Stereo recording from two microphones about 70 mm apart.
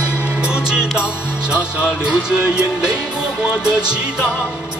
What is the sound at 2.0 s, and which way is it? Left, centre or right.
Music, centre.